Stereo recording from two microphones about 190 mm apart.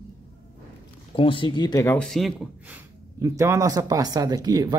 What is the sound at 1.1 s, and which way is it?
Speech, 25° left (ahead or behind).